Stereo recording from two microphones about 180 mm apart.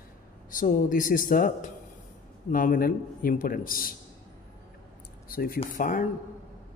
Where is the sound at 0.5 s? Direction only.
50° left (ahead or behind).